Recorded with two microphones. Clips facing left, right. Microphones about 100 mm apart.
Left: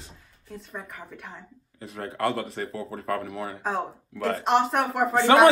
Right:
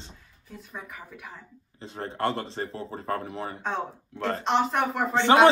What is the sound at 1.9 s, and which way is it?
A woman's voice, 30° right (ahead or behind).